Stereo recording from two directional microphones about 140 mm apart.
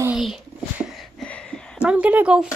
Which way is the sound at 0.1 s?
5° right (ahead or behind).